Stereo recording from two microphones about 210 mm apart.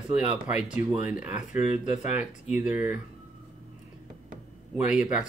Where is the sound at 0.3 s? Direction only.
5° right (ahead or behind).